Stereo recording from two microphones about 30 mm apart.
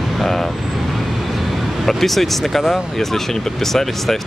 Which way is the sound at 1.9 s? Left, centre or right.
Centre.